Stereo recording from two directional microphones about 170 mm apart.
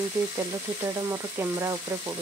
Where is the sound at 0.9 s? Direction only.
20° right (ahead or behind).